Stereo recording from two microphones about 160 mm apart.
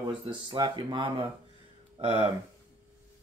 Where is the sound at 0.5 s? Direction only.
30° right (ahead or behind).